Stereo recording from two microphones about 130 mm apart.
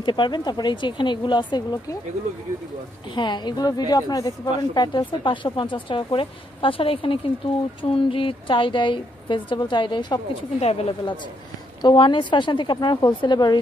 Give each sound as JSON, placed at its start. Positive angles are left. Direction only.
{"t": 0.0, "sound": "a woman's voice", "side_deg": 35}
{"t": 3.2, "sound": "a woman's voice", "side_deg": 35}
{"t": 10.6, "sound": "a woman's voice", "side_deg": 50}
{"t": 11.8, "sound": "a woman's voice", "side_deg": 35}